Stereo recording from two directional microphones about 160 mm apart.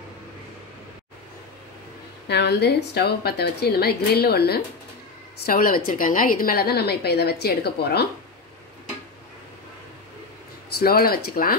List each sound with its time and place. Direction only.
2.2 s a woman's voice: 90° left
5.5 s a woman's voice: 65° left (ahead or behind); by 8.1 s 85° left
10.8 s a woman's voice: 70° left (ahead or behind)